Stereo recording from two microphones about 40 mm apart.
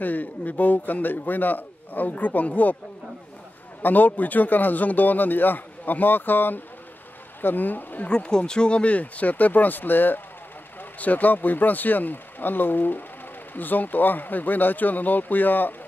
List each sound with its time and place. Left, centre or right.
0.0 s a man's voice: left
3.8 s a man's voice: left
8.1 s speech: left
10.8 s a man's voice: left